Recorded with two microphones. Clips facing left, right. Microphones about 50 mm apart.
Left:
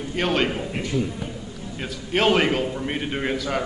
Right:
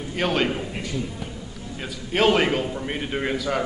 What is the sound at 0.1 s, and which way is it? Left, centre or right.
A man's voice, centre.